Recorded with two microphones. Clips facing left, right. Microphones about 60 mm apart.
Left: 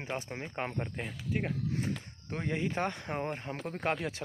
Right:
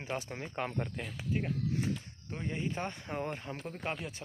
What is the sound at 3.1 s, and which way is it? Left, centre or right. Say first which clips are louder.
Speech: left 2 dB; left.